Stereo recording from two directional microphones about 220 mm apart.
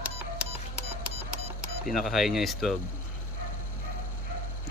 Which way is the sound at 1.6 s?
Centre (ahead or behind).